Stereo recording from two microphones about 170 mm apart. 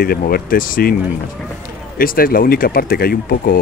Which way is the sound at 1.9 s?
55° left (ahead or behind).